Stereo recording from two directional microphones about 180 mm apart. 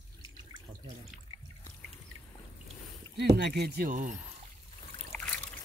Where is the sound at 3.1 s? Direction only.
65° right (ahead or behind); by 4.1 s 50° right (ahead or behind).